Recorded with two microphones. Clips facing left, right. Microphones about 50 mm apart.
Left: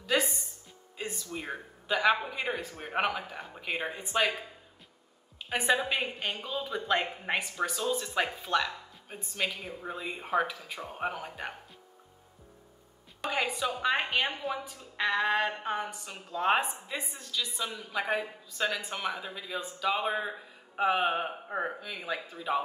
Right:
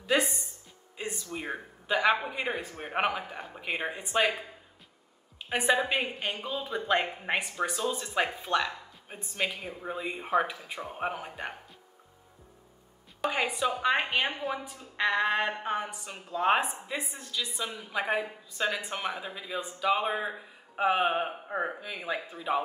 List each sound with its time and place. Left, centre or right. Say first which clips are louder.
0.0 s music: right 2 dB; centre
0.9 s a man's voice: right 1 dB; centre
5.6 s speech: right 2 dB; centre
13.2 s a woman's voice: right 2 dB; centre